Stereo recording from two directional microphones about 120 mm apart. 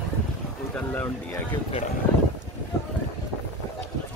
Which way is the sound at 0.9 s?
15° left (ahead or behind).